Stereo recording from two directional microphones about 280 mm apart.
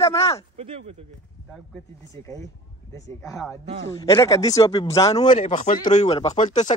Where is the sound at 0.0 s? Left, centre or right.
Left.